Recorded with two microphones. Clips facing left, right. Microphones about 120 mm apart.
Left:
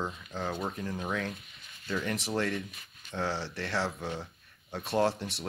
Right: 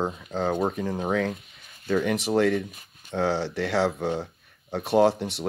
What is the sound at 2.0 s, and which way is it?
Speech, 75° right (ahead or behind).